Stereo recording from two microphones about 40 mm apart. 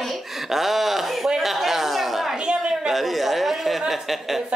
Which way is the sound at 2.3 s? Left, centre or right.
Right.